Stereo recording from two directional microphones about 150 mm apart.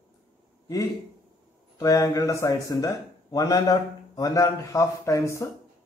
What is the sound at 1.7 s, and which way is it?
A man's voice, 20° left (ahead or behind).